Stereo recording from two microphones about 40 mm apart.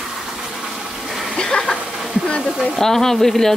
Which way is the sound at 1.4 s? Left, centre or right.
Centre.